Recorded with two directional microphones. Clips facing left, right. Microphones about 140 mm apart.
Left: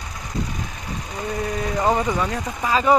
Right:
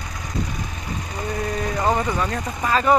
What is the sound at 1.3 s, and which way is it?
Speech, 5° left (ahead or behind).